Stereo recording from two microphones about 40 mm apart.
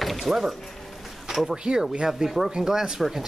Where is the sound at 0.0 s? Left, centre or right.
Centre.